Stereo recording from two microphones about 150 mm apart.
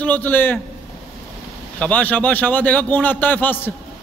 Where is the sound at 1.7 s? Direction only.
10° left (ahead or behind).